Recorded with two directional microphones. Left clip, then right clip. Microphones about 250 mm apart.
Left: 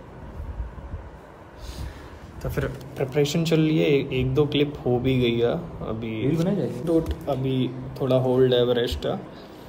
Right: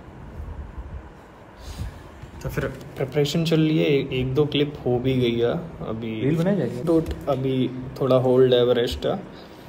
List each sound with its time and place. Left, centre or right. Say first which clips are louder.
2.4 s a man's voice: right 1 dB; centre
6.2 s speech: right 2 dB; right
6.8 s a man's voice: right 2 dB; centre